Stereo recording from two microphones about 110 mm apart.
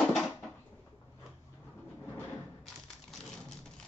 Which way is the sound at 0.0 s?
Centre (ahead or behind).